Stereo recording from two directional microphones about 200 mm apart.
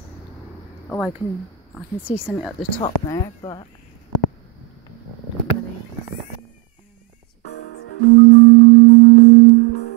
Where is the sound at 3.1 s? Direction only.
25° left (ahead or behind).